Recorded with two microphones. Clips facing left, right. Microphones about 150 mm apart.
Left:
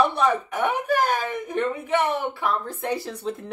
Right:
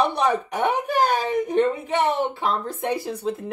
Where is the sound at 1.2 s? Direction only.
15° right (ahead or behind).